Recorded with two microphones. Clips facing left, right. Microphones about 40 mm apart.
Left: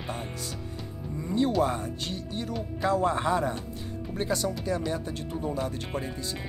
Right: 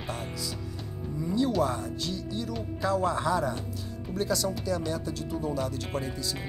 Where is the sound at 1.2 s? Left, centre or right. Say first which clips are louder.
Left 1 dB; left.